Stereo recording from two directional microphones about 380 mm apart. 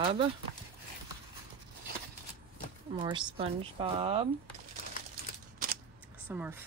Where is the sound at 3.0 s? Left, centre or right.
Centre.